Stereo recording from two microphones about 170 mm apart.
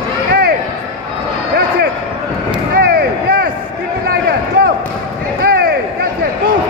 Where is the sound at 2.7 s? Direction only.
65° right (ahead or behind).